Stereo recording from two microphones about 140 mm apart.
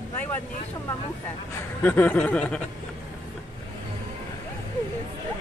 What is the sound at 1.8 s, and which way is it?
Speech, 15° left (ahead or behind).